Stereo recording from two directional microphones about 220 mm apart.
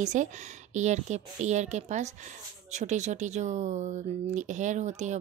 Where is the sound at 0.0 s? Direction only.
35° right (ahead or behind).